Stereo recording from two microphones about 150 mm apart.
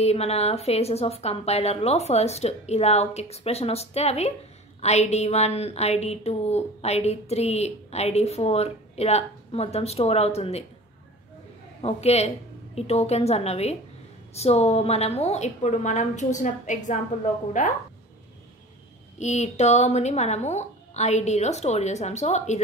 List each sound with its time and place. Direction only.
0.0 s a woman's voice: 45° left (ahead or behind)
11.8 s a woman's voice: 45° left (ahead or behind)
19.1 s a woman's voice: 50° left (ahead or behind)